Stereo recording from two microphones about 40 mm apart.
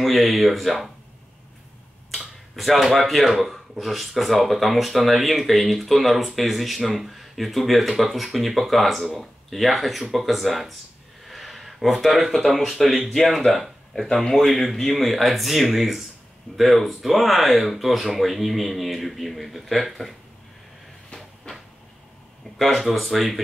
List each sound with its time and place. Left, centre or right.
0.0 s speech: centre
2.0 s speech: centre
21.5 s a sound: left
22.6 s speech: centre